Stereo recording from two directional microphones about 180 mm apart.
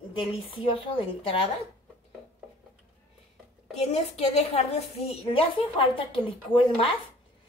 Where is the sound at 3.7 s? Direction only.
35° left (ahead or behind).